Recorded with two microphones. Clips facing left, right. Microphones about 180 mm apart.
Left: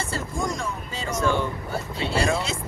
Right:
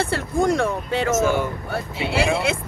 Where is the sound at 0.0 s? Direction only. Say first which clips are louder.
Right 8 dB; 65° right (ahead or behind).